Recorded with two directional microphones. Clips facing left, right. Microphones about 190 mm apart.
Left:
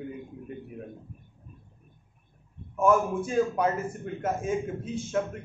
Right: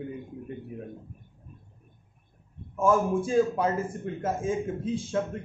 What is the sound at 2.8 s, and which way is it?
A man's voice, 30° right (ahead or behind).